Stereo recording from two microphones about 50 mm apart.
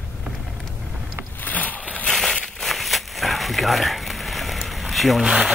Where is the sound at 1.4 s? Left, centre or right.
Left.